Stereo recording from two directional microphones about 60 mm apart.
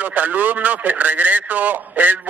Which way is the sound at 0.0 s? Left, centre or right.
Right.